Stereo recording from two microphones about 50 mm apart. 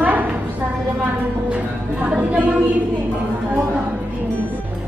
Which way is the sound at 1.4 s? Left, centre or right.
Right.